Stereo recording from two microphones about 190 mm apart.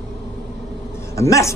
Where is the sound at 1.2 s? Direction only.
15° left (ahead or behind).